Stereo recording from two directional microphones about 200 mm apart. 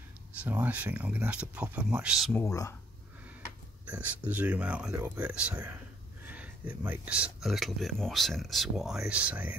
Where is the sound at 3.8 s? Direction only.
10° right (ahead or behind).